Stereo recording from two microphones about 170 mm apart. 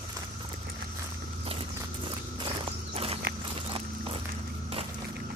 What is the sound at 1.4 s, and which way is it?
Walk, 35° right (ahead or behind).